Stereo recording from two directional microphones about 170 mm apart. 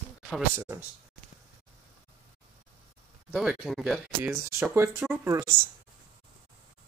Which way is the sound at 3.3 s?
Centre (ahead or behind).